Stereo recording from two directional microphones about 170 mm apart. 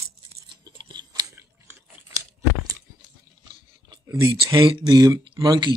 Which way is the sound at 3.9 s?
20° right (ahead or behind).